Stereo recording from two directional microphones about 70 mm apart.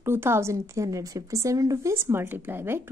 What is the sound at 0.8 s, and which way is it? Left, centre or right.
Speech, right.